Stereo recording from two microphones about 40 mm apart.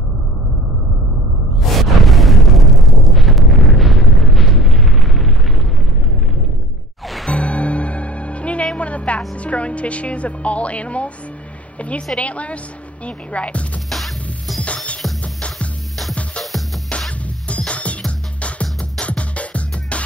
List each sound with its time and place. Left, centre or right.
1.6 s a sound: centre
7.2 s music: left
9.3 s a woman's voice: left
12.2 s a woman's voice: left
13.8 s music: centre
17.5 s music: left